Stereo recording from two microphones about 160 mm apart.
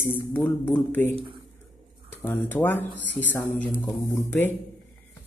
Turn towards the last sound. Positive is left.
turn(degrees=15)  # may be behind; listen again after turning